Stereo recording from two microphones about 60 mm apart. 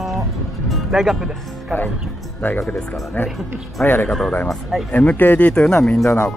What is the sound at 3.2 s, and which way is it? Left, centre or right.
Speech, left.